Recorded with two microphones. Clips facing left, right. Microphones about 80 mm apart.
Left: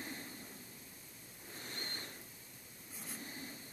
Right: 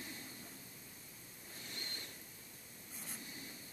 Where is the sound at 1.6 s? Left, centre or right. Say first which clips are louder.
Left 4 dB; left.